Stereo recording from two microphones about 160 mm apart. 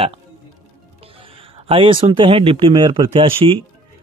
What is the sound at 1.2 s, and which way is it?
Speech, 35° right (ahead or behind).